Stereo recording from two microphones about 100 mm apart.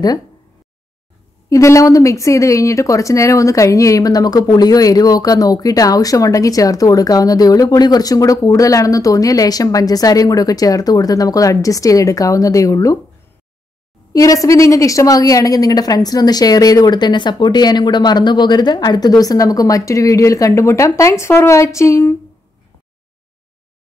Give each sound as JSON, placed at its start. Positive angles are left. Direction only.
{"t": 1.5, "sound": "speech", "side_deg": 30}
{"t": 14.1, "sound": "speech", "side_deg": 35}